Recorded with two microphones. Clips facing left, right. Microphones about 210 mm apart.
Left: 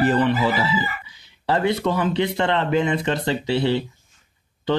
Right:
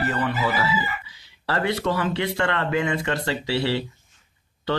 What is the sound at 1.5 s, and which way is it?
Speech, 20° left (ahead or behind).